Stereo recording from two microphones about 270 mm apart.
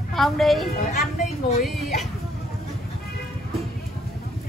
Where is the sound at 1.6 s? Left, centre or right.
Centre.